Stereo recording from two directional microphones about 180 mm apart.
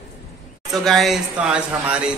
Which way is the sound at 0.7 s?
Centre (ahead or behind).